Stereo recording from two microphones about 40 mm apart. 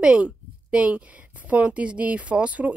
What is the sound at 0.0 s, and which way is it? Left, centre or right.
Speech, right.